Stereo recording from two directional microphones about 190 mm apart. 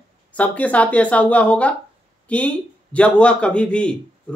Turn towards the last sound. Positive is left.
turn(degrees=5)  # may be behind; listen again after turning